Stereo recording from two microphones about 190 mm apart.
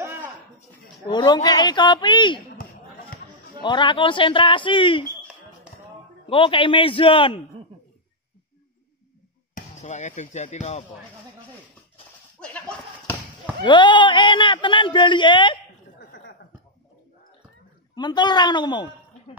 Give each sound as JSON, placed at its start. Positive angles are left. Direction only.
{"t": 0.0, "sound": "a sound", "side_deg": -10}
{"t": 1.0, "sound": "speech", "side_deg": 25}
{"t": 3.6, "sound": "speech", "side_deg": 25}
{"t": 6.2, "sound": "speech", "side_deg": 30}
{"t": 9.6, "sound": "speech", "side_deg": 40}
{"t": 12.4, "sound": "a sound", "side_deg": 5}
{"t": 13.7, "sound": "speech", "side_deg": 25}
{"t": 16.0, "sound": "chuckle", "side_deg": 60}
{"t": 17.9, "sound": "speech", "side_deg": 20}